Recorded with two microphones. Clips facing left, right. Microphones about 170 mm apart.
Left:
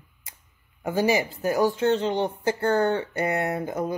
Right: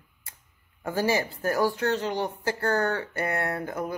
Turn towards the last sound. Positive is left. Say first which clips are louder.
# left 3 dB
turn(degrees=20)  # may be behind; listen again after turning